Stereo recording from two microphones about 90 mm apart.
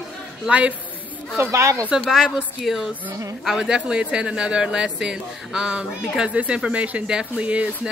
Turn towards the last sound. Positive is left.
turn(degrees=-15)  # may be behind; listen again after turning